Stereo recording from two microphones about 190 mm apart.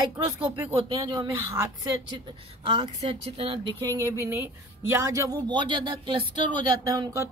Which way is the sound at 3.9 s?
15° right (ahead or behind).